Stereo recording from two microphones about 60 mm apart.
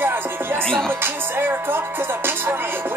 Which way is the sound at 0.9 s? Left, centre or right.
Right.